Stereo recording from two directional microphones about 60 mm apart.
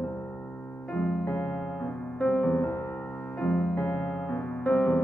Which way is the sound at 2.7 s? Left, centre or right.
Left.